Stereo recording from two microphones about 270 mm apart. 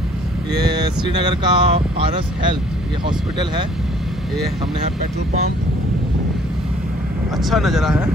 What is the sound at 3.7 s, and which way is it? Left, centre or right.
Vehicle, centre.